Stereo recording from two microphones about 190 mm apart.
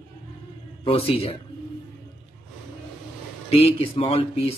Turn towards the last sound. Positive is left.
turn(degrees=30)  # may be behind; listen again after turning